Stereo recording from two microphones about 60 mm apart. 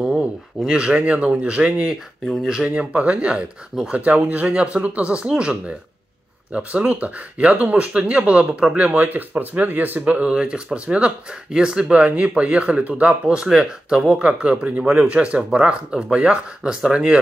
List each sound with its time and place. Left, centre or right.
0.7 s speech: centre